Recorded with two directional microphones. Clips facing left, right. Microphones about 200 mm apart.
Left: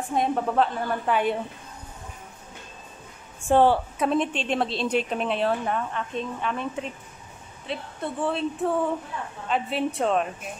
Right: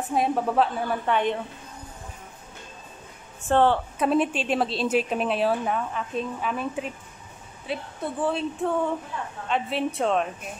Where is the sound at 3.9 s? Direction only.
5° right (ahead or behind).